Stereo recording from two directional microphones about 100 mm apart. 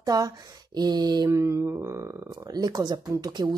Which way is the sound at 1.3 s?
30° right (ahead or behind).